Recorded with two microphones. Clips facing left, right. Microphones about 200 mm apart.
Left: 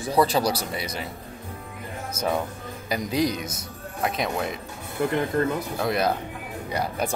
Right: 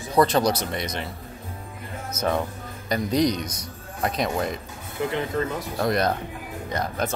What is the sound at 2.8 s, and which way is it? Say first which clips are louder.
A man's voice: right 3 dB; 5° left (ahead or behind).